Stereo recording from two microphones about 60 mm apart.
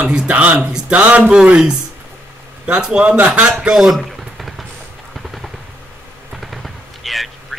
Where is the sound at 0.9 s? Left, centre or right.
Right.